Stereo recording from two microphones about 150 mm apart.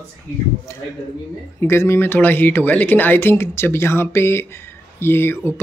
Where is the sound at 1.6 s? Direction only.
15° left (ahead or behind).